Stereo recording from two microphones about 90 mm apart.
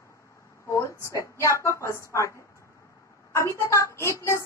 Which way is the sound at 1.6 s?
30° left (ahead or behind).